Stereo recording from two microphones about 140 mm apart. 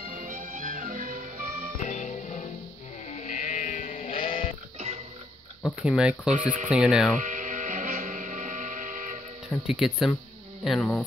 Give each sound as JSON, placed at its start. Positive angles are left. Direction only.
{"t": 0.1, "sound": "music", "side_deg": -70}
{"t": 1.8, "sound": "music", "side_deg": 60}
{"t": 3.1, "sound": "sheep", "side_deg": 55}
{"t": 4.1, "sound": "sheep", "side_deg": 40}
{"t": 4.7, "sound": "music", "side_deg": -50}
{"t": 5.8, "sound": "speech", "side_deg": -5}
{"t": 6.3, "sound": "speech", "side_deg": -65}
{"t": 6.7, "sound": "speech", "side_deg": -5}
{"t": 7.2, "sound": "music", "side_deg": -65}
{"t": 9.7, "sound": "speech", "side_deg": -5}